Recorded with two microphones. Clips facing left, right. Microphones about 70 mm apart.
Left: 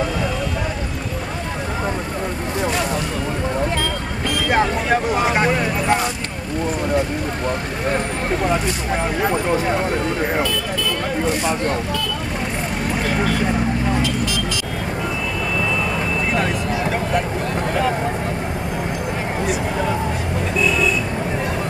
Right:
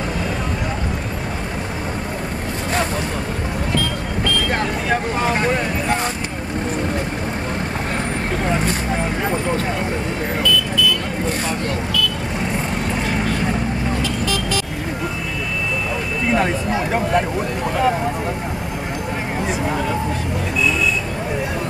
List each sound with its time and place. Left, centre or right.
5.1 s speech: centre
10.4 s vehicle: left
11.6 s speech: left
14.0 s vehicle: right